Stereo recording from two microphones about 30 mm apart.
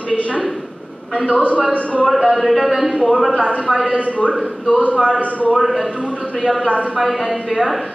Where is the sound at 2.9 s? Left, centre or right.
Centre.